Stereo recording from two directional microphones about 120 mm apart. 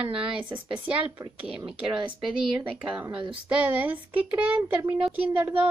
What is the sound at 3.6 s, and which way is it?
Speech, 15° right (ahead or behind).